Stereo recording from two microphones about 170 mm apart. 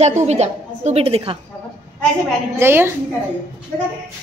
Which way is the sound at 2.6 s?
15° right (ahead or behind).